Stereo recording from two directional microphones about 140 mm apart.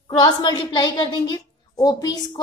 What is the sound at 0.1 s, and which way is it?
A woman's voice, 30° left (ahead or behind).